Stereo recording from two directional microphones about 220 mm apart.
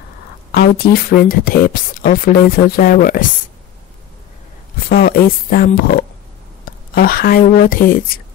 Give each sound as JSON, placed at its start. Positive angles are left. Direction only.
{"t": 0.5, "sound": "speech", "side_deg": 45}
{"t": 4.8, "sound": "speech", "side_deg": 40}